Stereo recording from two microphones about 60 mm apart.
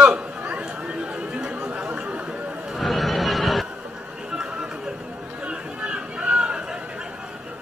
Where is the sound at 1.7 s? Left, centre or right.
Right.